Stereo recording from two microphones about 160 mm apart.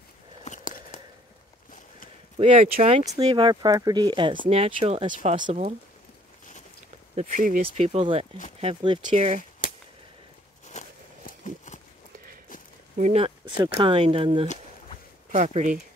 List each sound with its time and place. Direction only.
0.5 s a sound: 55° left (ahead or behind)
2.3 s speech: 35° right (ahead or behind)
2.8 s speech: 45° right (ahead or behind)
3.2 s speech: 35° right (ahead or behind)
7.2 s speech: 55° right (ahead or behind)
7.6 s speech: 40° right (ahead or behind)
10.7 s a sound: 50° left (ahead or behind)
12.9 s speech: 45° right (ahead or behind)
15.3 s speech: 45° right (ahead or behind)